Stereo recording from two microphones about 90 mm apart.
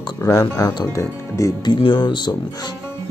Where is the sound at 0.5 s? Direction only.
40° left (ahead or behind).